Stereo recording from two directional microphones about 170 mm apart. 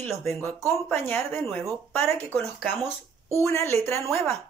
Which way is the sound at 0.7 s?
10° left (ahead or behind).